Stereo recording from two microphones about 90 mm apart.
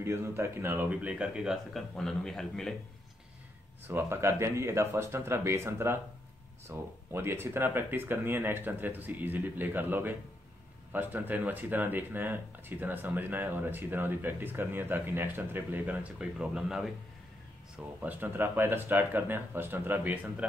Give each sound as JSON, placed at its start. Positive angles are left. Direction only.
{"t": 0.0, "sound": "speech", "side_deg": -30}
{"t": 3.8, "sound": "speech", "side_deg": -25}
{"t": 18.0, "sound": "speech", "side_deg": -25}